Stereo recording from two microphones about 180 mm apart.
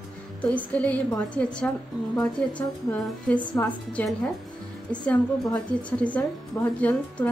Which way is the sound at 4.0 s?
10° left (ahead or behind).